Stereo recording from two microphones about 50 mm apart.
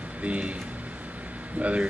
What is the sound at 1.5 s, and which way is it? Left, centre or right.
Speech, right.